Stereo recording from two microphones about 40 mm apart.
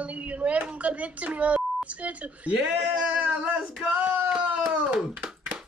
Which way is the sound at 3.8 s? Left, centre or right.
Right.